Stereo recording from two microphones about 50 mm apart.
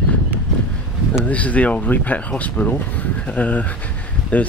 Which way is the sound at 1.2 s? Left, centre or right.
Left.